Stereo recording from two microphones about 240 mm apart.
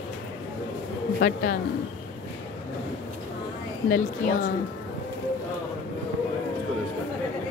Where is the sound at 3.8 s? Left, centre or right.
Left.